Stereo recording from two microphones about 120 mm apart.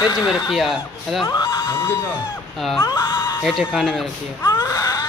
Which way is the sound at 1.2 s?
20° left (ahead or behind).